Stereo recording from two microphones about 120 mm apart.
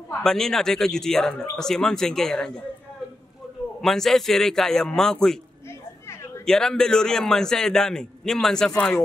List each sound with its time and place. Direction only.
0.1 s a man's voice: 5° left (ahead or behind)
3.8 s a man's voice: 5° left (ahead or behind)
5.7 s a sound: 25° left (ahead or behind)
6.4 s a man's voice: 5° left (ahead or behind)